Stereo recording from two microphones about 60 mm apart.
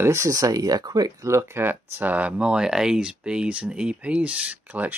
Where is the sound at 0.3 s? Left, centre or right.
Right.